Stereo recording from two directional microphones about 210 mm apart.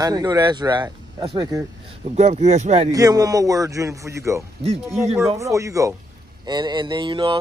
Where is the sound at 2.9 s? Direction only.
15° right (ahead or behind).